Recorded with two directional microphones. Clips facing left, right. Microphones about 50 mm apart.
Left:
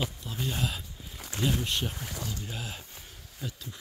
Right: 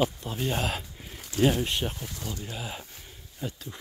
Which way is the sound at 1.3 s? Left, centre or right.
Left.